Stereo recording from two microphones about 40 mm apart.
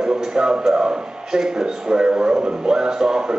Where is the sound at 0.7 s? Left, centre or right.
Right.